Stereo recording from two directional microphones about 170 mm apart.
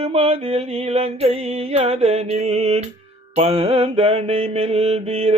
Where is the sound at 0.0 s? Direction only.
35° right (ahead or behind).